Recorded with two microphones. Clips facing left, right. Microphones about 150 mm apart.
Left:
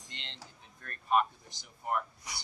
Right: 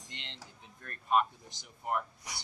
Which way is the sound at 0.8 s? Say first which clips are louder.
Even; 15° right (ahead or behind).